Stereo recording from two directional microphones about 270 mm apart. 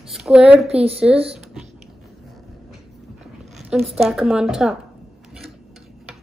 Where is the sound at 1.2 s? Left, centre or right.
Centre.